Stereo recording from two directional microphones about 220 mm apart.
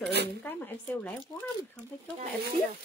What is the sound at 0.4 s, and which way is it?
Speech, 10° left (ahead or behind).